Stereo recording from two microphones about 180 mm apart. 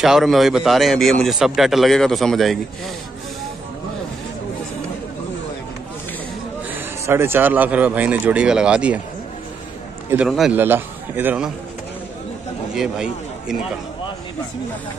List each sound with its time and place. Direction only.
0.0 s a man's voice: centre (ahead or behind)
6.7 s speech: 15° right (ahead or behind)
10.0 s a man's voice: 5° right (ahead or behind)
12.7 s speech: 5° right (ahead or behind)